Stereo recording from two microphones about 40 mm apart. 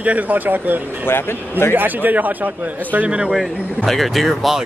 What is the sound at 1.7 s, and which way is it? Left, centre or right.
Speech, right.